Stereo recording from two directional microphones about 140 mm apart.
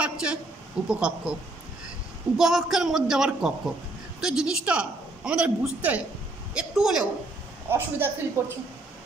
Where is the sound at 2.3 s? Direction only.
5° right (ahead or behind).